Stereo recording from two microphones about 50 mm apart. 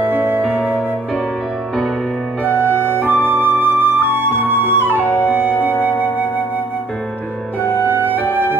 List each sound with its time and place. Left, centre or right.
0.0 s music: right
2.6 s music: right
3.1 s flute: right
5.0 s flute: left
5.8 s flute: right
7.9 s music: right